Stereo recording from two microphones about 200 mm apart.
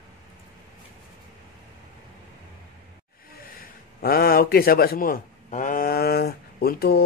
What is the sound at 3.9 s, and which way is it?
Speech, 45° left (ahead or behind).